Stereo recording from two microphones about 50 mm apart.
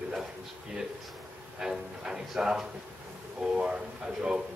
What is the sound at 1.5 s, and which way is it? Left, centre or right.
A man's voice, centre.